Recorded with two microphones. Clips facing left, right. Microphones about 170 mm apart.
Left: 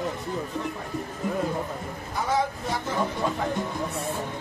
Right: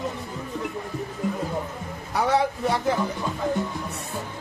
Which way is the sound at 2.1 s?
70° right (ahead or behind).